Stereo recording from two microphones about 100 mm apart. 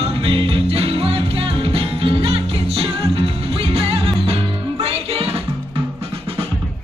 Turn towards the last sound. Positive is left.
turn(degrees=-75)  # may be behind; listen again after turning